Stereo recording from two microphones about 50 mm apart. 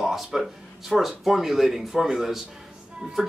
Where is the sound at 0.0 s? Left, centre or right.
Centre.